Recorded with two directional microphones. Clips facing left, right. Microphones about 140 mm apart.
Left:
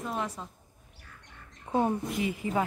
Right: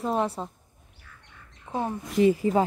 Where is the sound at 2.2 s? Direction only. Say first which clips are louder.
Right 12 dB; 35° right (ahead or behind).